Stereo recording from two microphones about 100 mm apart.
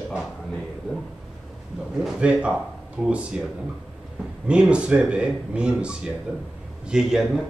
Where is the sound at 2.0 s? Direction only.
10° right (ahead or behind).